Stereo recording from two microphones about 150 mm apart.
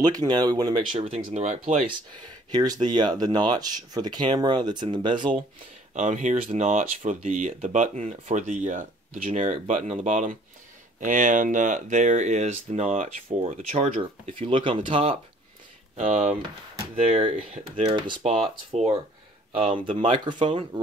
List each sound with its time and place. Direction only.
0.0 s speech: 25° right (ahead or behind)
0.9 s speech: 45° right (ahead or behind)
2.5 s speech: 25° right (ahead or behind)
5.9 s speech: 55° right (ahead or behind)
14.4 s speech: 35° right (ahead or behind)
16.0 s speech: 50° right (ahead or behind); by 20.8 s 35° right (ahead or behind)